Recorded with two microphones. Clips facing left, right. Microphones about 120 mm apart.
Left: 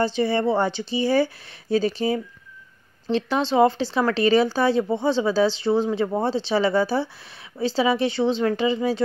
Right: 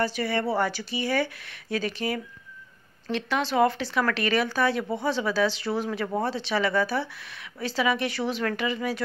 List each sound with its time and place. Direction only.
0.0 s speech: 25° left (ahead or behind)